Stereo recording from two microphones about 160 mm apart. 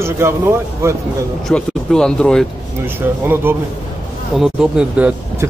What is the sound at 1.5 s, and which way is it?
Speech, 5° left (ahead or behind).